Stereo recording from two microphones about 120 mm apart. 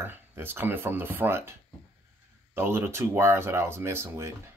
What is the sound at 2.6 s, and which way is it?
Speech, 20° right (ahead or behind).